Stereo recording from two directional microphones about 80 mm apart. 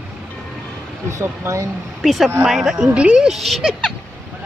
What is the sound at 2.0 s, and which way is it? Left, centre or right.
Speech, centre.